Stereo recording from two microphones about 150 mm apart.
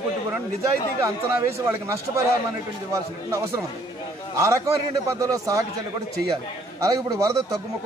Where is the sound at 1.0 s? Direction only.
15° right (ahead or behind).